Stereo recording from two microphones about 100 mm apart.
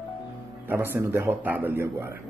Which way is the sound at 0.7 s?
20° right (ahead or behind).